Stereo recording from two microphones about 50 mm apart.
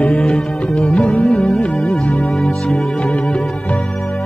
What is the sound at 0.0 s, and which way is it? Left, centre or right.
Music, left.